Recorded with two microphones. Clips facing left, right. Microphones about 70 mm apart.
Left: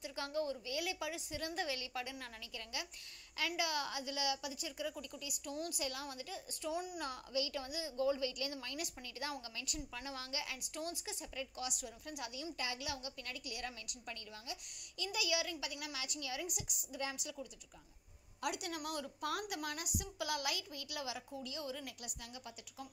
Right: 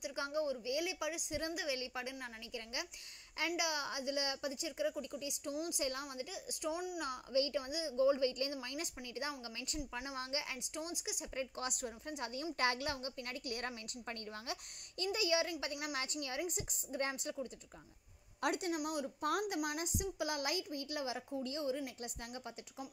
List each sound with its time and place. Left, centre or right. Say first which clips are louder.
0.0 s a woman's voice: right 2 dB; right
1.5 s a woman's voice: left 2 dB; centre
1.8 s a woman's voice: right 1 dB; right
6.3 s a woman's voice: even; centre
7.3 s a woman's voice: right 5 dB; right
11.3 s a woman's voice: right 3 dB; right
12.1 s a woman's voice: right 2 dB; right
12.5 s a woman's voice: right 9 dB; right
12.9 s a woman's voice: right 3 dB; right
15.1 s a woman's voice: right 3 dB; right
18.4 s a woman's voice: right 4 dB; right
18.9 s a woman's voice: right 3 dB; right
19.2 s a woman's voice: right 5 dB; right
19.6 s a woman's voice: right 4 dB; right